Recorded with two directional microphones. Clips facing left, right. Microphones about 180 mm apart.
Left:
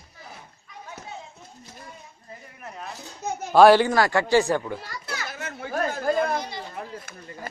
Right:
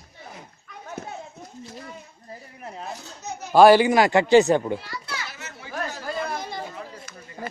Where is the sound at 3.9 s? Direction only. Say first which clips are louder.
Right 4 dB; 20° right (ahead or behind).